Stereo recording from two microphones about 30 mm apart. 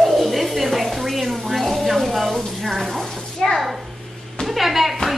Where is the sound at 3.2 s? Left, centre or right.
Left.